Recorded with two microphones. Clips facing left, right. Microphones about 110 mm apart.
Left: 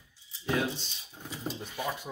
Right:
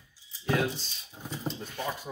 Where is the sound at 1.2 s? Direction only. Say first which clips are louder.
Right 2 dB; 10° right (ahead or behind).